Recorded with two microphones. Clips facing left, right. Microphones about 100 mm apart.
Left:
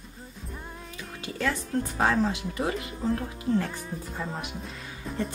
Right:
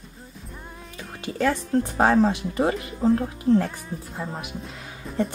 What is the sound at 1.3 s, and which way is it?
Speech, 40° right (ahead or behind).